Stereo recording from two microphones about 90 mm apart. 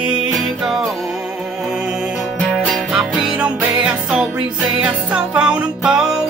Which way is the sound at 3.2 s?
15° right (ahead or behind).